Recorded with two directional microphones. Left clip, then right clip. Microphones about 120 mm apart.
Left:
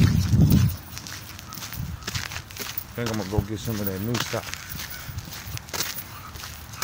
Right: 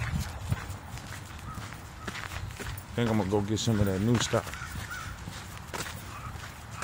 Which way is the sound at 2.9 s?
70° right (ahead or behind).